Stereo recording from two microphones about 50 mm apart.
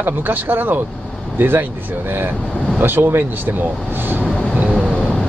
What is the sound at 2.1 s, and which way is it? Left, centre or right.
Speech, right.